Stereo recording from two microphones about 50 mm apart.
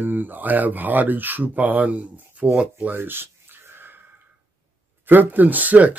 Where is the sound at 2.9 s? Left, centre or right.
Right.